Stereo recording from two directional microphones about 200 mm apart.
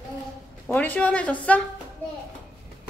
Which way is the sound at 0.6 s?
10° left (ahead or behind).